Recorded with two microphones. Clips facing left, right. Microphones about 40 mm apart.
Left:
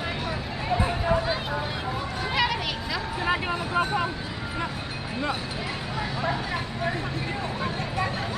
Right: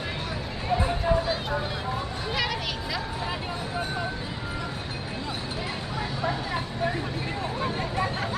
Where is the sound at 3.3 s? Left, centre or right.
Left.